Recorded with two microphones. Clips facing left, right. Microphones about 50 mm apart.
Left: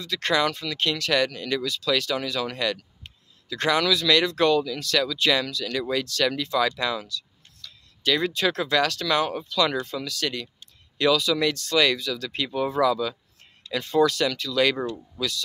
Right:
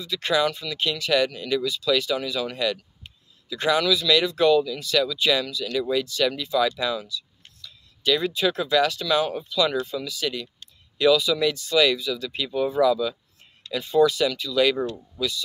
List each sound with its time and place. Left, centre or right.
0.0 s a man's voice: left